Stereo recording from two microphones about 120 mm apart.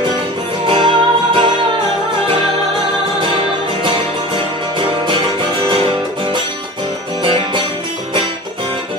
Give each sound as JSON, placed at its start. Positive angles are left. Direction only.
{"t": 0.7, "sound": "music", "side_deg": -45}